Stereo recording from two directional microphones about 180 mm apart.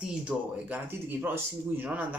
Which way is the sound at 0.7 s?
10° right (ahead or behind).